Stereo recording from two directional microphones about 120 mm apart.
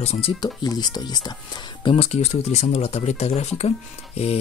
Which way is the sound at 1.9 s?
55° left (ahead or behind).